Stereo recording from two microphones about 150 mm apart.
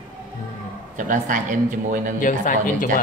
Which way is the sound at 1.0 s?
60° right (ahead or behind).